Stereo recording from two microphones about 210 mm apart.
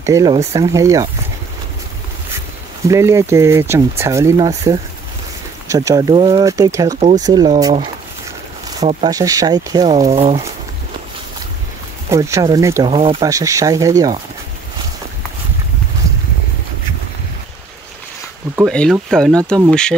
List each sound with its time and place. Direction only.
0.0 s speech: 15° right (ahead or behind)
2.9 s speech: 15° right (ahead or behind)
8.8 s speech: 20° right (ahead or behind)
10.0 s speech: 30° right (ahead or behind)
12.1 s speech: 15° right (ahead or behind)
12.9 s speech: 25° right (ahead or behind)
13.3 s speech: 15° right (ahead or behind)
18.7 s speech: 5° left (ahead or behind)